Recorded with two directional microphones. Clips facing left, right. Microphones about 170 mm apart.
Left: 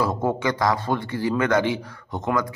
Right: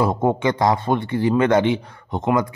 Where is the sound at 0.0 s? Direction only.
25° right (ahead or behind).